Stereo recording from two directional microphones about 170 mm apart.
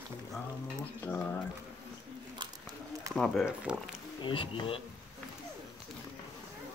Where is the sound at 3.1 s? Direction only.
Centre (ahead or behind).